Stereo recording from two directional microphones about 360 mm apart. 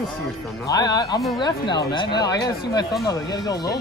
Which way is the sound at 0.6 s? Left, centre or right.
Centre.